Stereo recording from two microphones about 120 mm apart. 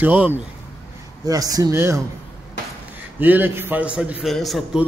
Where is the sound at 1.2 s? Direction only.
30° right (ahead or behind).